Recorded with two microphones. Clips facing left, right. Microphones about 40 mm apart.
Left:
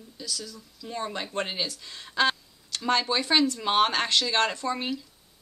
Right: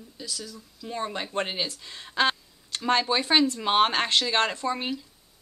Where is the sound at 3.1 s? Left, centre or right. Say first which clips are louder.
Right 1 dB; centre.